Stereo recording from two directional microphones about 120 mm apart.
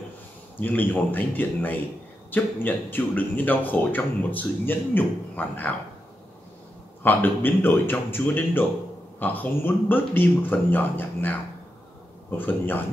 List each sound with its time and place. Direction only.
0.6 s speech: 15° left (ahead or behind)
7.0 s speech: 15° left (ahead or behind)